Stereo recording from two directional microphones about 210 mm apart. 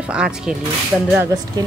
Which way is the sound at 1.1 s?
15° right (ahead or behind).